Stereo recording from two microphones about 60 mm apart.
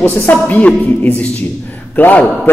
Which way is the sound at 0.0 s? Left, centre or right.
Left.